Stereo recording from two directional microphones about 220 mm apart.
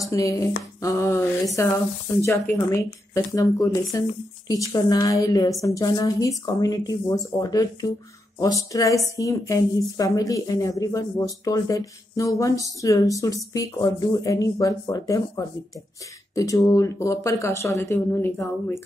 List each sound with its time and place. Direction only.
0.1 s a woman's voice: 15° left (ahead or behind)